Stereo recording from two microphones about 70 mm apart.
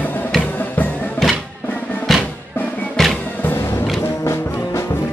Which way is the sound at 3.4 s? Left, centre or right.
Left.